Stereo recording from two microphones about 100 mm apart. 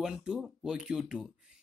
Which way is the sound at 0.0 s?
5° right (ahead or behind).